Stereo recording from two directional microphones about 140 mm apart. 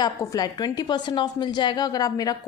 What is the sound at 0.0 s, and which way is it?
A woman's voice, 25° left (ahead or behind).